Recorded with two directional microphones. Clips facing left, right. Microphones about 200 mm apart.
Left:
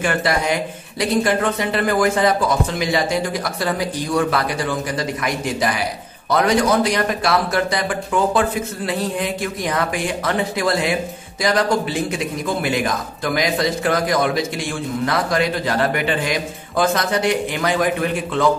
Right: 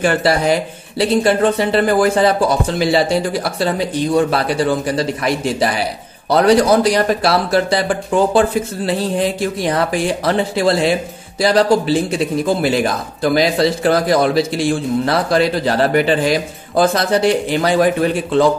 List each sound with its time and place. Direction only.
0.0 s a man's voice: 35° right (ahead or behind)